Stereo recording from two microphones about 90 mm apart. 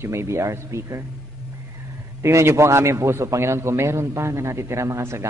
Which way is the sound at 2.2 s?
30° right (ahead or behind).